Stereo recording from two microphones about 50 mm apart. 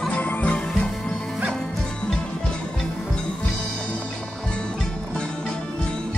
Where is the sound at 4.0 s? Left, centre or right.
Centre.